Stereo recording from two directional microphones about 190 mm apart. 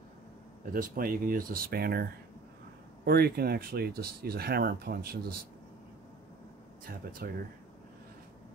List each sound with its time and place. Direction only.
0.7 s speech: 50° right (ahead or behind)
3.1 s speech: 55° right (ahead or behind)
7.2 s speech: 50° right (ahead or behind)